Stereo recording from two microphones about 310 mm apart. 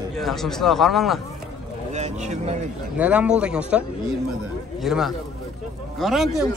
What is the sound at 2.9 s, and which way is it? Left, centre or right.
Speech, centre.